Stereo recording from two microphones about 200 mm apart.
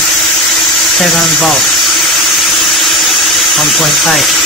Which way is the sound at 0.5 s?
Centre (ahead or behind).